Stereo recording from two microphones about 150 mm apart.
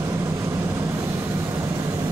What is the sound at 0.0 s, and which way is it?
Vehicle, 20° right (ahead or behind).